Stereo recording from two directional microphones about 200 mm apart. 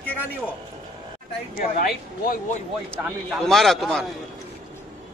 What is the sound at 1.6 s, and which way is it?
Speech, 45° left (ahead or behind).